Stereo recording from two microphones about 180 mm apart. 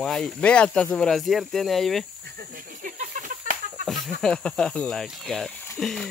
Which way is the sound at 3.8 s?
Centre (ahead or behind).